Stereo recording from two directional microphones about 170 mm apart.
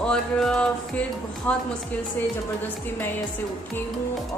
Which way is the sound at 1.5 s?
10° left (ahead or behind).